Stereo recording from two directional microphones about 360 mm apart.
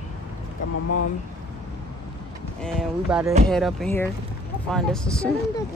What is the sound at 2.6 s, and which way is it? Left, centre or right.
Speech, centre.